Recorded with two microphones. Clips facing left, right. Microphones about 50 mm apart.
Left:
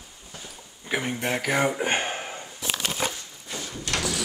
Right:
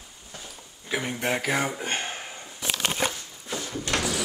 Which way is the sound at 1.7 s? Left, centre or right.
Left.